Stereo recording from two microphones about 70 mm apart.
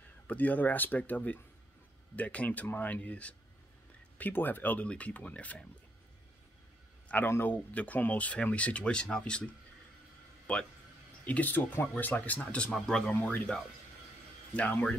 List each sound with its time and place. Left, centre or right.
0.3 s speech: left
4.2 s speech: left
7.2 s a man's voice: left
12.7 s speech: centre